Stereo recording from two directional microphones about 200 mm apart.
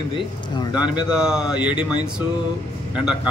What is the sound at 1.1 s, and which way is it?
Speech, 5° right (ahead or behind).